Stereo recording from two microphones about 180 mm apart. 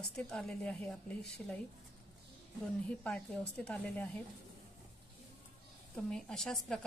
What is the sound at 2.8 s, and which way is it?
Speech, 5° left (ahead or behind).